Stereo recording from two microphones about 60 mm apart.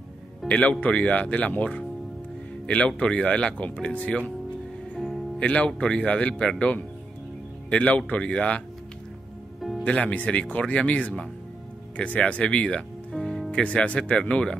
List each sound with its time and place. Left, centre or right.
0.5 s speech: left
3.0 s speech: centre
4.9 s music: centre
5.4 s speech: left
7.7 s speech: left
9.8 s speech: left
13.1 s music: centre
13.5 s speech: left